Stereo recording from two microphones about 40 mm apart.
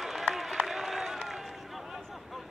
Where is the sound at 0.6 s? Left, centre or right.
Centre.